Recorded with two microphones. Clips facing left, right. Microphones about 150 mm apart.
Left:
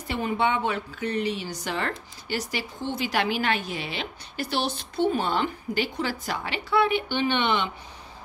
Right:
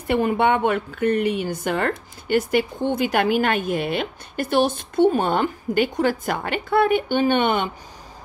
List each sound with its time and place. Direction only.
0.1 s a woman's voice: 55° right (ahead or behind)